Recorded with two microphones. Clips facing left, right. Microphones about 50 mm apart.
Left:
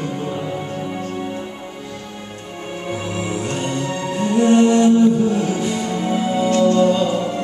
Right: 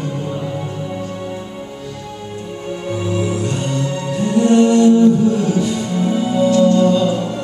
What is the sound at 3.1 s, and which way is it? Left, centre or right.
Music, centre.